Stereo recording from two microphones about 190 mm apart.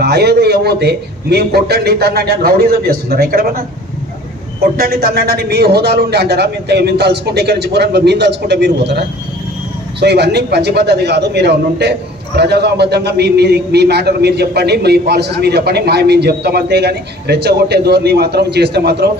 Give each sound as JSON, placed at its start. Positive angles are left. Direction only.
{"t": 0.0, "sound": "a man's voice", "side_deg": -60}
{"t": 4.7, "sound": "a man's voice", "side_deg": -50}